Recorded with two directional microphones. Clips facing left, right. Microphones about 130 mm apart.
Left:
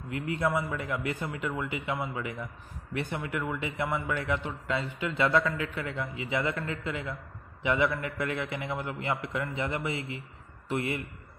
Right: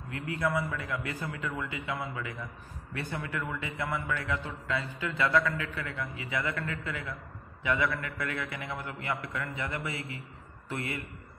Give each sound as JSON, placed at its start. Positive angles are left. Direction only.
{"t": 0.1, "sound": "a man's voice", "side_deg": 25}